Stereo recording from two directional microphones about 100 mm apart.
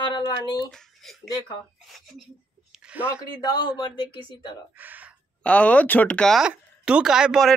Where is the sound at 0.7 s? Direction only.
5° left (ahead or behind).